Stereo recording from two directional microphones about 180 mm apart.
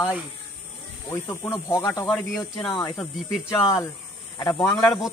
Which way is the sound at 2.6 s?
25° left (ahead or behind).